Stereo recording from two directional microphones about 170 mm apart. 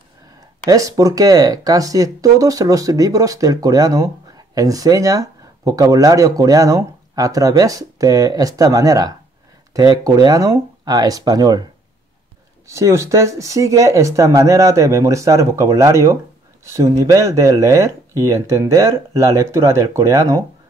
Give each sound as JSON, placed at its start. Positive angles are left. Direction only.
{"t": 0.7, "sound": "speech", "side_deg": -20}
{"t": 12.6, "sound": "speech", "side_deg": -15}